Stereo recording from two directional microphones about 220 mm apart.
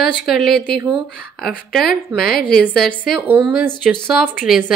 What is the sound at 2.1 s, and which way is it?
Speech, 45° left (ahead or behind).